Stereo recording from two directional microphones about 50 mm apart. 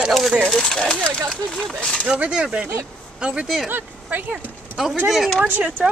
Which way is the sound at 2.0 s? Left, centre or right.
Right.